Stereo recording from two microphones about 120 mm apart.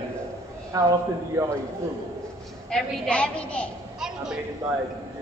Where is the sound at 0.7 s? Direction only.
30° right (ahead or behind).